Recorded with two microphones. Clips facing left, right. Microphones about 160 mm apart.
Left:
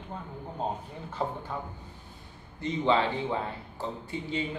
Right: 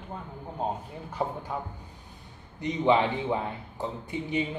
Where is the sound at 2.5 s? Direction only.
15° right (ahead or behind).